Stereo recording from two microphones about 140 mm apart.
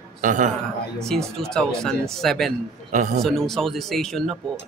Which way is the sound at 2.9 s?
65° right (ahead or behind).